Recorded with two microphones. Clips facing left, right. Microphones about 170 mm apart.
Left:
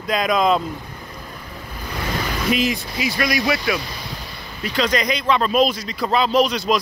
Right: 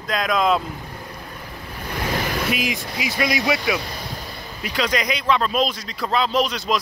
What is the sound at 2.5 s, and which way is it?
Speech, 15° right (ahead or behind).